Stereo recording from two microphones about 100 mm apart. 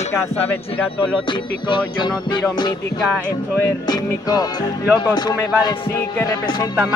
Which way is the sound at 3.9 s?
40° left (ahead or behind).